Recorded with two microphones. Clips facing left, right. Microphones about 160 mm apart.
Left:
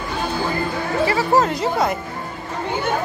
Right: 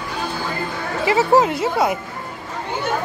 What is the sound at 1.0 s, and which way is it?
Speech, 15° right (ahead or behind).